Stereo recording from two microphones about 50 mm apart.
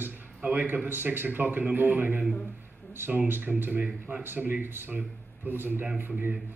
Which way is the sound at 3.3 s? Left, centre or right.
Right.